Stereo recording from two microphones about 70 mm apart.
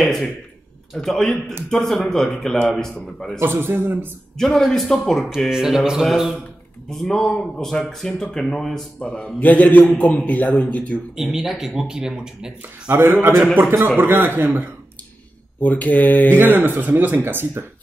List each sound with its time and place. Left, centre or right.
0.9 s a man's voice: centre
3.3 s a man's voice: right
4.4 s a man's voice: centre
6.9 s a man's voice: centre
9.4 s a man's voice: left
11.1 s speech: centre
12.9 s a man's voice: right
15.6 s a man's voice: left
16.3 s speech: right